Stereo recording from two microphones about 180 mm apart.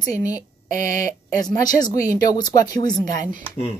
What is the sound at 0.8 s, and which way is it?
Speech, 45° right (ahead or behind).